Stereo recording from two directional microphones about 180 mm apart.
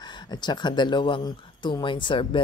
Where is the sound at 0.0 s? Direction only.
25° left (ahead or behind).